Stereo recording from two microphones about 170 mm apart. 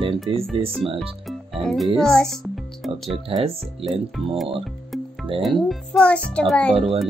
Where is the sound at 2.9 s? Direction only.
35° right (ahead or behind).